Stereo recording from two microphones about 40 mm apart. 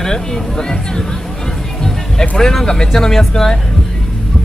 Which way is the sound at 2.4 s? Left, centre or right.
Centre.